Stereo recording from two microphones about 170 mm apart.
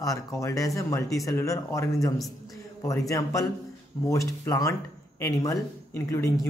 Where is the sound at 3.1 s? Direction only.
20° left (ahead or behind).